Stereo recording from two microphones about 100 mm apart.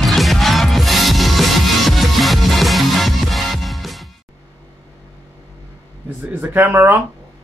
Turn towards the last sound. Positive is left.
turn(degrees=-20)  # may be behind; listen again after turning